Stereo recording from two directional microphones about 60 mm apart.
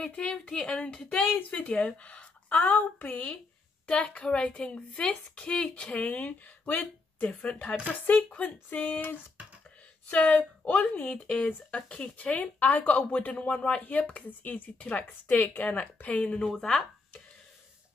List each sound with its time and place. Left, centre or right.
0.0 s a woman's voice: centre
8.0 s speech: left
10.0 s speech: left